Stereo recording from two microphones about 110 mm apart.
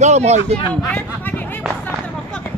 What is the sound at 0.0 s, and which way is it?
Speech, 90° right.